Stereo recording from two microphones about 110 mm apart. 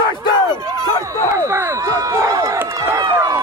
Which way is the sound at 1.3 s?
25° right (ahead or behind).